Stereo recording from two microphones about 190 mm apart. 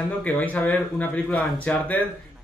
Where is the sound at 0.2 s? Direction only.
10° left (ahead or behind).